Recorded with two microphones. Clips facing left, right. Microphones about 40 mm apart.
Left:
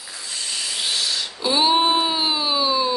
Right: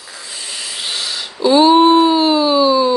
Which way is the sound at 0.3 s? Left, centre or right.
Centre.